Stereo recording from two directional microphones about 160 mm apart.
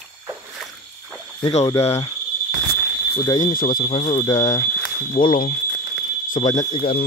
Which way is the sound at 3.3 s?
55° left (ahead or behind).